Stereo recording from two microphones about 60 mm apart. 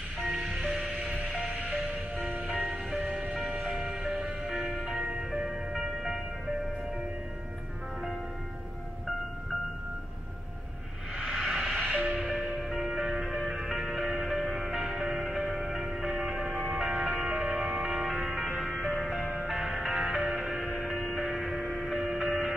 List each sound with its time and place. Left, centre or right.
0.2 s music: centre
0.5 s music: centre
11.5 s music: centre
11.9 s music: centre